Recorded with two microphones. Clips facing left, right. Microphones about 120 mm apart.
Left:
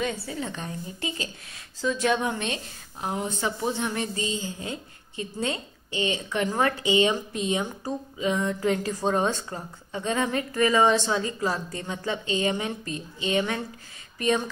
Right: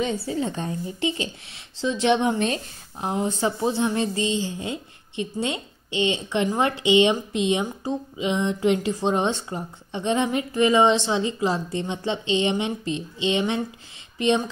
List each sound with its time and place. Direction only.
0.1 s a woman's voice: 35° right (ahead or behind)